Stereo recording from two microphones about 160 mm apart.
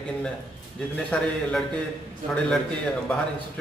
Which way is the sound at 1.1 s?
10° left (ahead or behind).